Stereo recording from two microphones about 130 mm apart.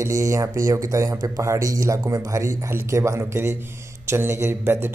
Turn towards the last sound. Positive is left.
turn(degrees=-15)  # may be behind; listen again after turning